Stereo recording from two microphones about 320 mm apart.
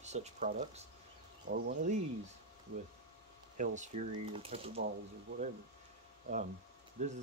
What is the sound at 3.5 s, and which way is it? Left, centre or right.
Speech, right.